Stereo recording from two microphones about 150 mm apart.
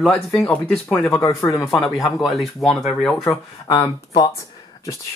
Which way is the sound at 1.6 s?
Centre (ahead or behind).